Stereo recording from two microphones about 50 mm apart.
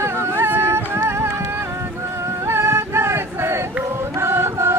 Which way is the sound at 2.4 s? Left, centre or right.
Right.